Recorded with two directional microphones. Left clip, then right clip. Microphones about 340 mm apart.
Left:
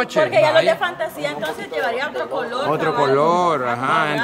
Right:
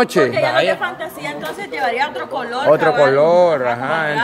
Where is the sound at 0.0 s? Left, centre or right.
Right.